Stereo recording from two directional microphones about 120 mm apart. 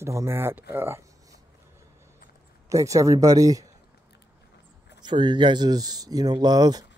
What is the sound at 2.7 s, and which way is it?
Speech, 25° right (ahead or behind).